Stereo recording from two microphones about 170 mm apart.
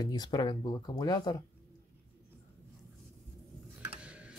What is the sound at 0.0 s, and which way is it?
Speech, 25° left (ahead or behind).